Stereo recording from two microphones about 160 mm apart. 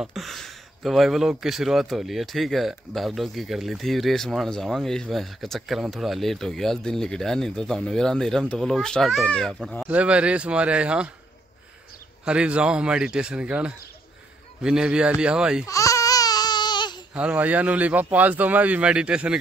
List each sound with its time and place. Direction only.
0.0 s a man's voice: centre (ahead or behind)
12.3 s a man's voice: 5° right (ahead or behind)
15.6 s a sound: 20° left (ahead or behind)
17.1 s a man's voice: 10° right (ahead or behind)